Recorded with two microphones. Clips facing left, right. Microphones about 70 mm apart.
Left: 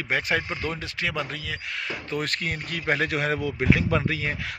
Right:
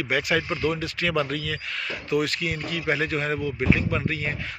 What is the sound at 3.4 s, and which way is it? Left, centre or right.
Speech, left.